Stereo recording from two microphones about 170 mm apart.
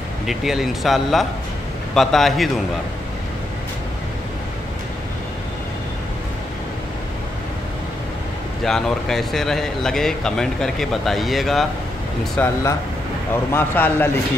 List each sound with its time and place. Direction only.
0.3 s speech: centre (ahead or behind)
8.6 s a man's voice: centre (ahead or behind)